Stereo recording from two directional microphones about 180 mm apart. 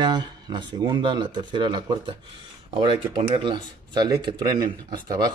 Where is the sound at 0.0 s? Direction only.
25° right (ahead or behind).